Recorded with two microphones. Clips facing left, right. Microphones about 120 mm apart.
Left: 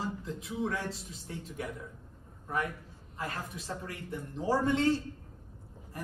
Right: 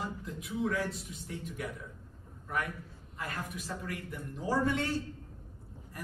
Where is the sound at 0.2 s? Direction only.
30° left (ahead or behind).